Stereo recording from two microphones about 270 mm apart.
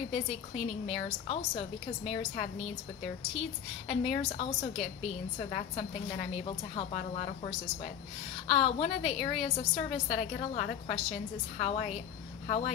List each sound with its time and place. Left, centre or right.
0.1 s a woman's voice: left
8.5 s a woman's voice: left